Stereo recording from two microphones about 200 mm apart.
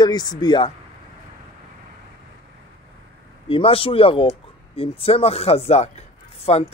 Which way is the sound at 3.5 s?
25° left (ahead or behind).